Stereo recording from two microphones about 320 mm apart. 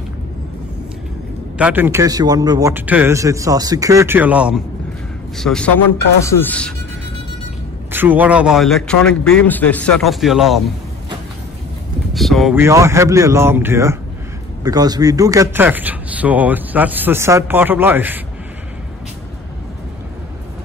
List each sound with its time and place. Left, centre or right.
1.6 s a man's voice: centre
7.9 s a man's voice: centre
12.1 s a man's voice: centre